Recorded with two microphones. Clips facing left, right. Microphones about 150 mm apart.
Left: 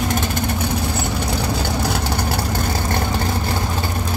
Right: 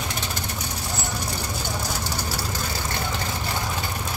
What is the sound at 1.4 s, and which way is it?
Vehicle, 65° left (ahead or behind).